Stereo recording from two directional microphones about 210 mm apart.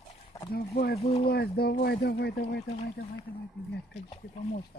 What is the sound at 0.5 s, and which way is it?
Speech, 50° left (ahead or behind).